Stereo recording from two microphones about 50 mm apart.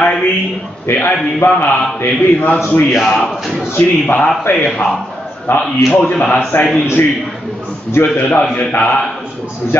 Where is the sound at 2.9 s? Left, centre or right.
Centre.